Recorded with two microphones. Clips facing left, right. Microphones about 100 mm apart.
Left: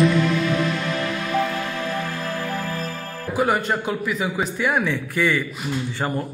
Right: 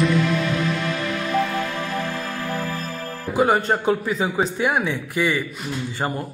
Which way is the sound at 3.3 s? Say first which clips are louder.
Right 2 dB; 30° right (ahead or behind).